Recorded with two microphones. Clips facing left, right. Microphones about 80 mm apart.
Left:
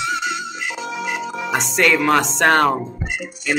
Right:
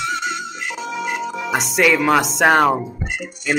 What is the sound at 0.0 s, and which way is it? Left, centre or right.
Music, centre.